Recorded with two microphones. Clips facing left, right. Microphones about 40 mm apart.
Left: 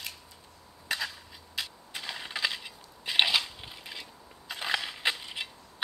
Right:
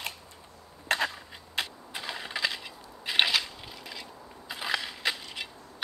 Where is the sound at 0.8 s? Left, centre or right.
Right.